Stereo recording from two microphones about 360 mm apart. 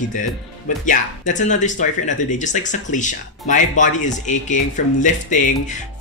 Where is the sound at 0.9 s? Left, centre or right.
Left.